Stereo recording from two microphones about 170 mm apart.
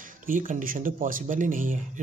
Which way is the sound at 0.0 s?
50° right (ahead or behind).